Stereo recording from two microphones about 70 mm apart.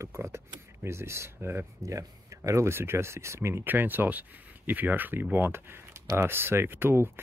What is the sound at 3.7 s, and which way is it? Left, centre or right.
Speech, right.